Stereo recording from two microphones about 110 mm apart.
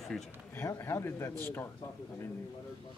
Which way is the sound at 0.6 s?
20° left (ahead or behind).